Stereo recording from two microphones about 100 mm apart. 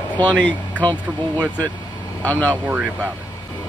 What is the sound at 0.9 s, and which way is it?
Speech, 45° right (ahead or behind).